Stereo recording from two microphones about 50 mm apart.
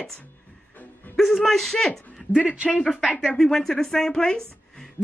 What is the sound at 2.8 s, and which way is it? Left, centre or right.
Speech, centre.